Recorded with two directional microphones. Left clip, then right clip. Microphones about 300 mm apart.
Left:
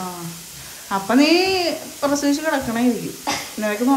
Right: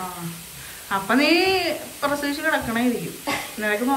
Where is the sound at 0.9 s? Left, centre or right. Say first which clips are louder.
Left 3 dB; centre.